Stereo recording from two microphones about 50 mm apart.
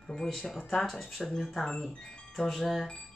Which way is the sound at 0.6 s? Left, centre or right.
Centre.